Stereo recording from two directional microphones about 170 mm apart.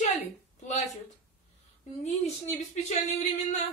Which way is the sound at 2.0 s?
40° left (ahead or behind).